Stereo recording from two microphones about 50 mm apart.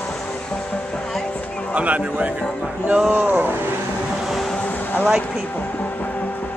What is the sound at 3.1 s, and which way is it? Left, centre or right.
Speech, right.